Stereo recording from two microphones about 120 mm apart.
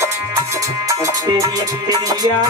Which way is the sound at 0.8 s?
30° right (ahead or behind).